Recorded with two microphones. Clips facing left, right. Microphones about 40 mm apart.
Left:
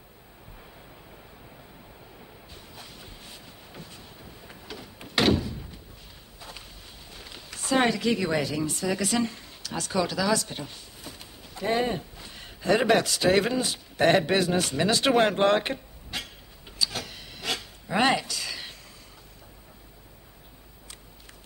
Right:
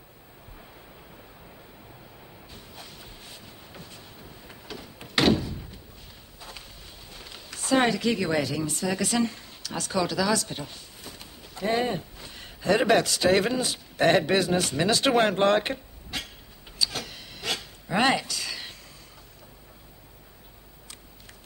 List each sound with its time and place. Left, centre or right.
2.5 s vehicle: centre
4.7 s door: centre
7.1 s speech: centre
16.7 s a sound: centre